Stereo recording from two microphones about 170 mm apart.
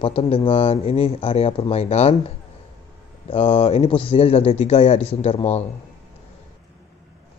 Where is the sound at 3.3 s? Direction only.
35° left (ahead or behind).